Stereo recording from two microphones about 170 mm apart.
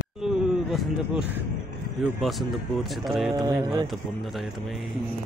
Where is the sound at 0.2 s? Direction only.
Centre (ahead or behind).